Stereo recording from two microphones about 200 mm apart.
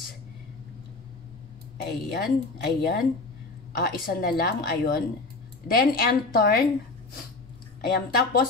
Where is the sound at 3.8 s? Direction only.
50° left (ahead or behind).